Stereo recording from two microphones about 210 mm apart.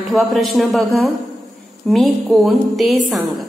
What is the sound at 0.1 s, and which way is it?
A woman's voice, centre (ahead or behind).